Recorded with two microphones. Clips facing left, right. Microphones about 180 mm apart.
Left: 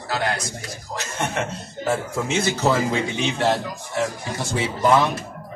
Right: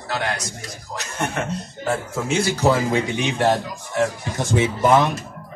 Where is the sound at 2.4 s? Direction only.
15° right (ahead or behind).